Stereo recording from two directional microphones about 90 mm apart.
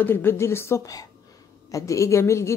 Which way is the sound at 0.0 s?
25° left (ahead or behind).